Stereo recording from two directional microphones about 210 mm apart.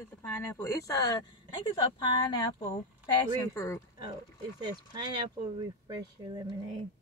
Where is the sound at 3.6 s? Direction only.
15° left (ahead or behind).